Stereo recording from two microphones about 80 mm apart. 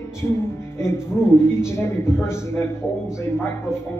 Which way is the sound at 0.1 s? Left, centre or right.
Left.